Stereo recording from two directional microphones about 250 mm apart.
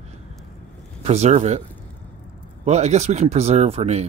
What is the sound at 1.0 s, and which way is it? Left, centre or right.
Speech, right.